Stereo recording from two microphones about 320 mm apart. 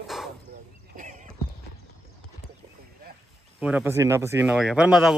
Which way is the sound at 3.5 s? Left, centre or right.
Centre.